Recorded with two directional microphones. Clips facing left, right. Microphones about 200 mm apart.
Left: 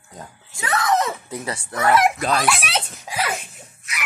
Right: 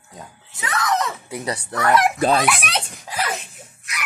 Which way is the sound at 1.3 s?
20° right (ahead or behind).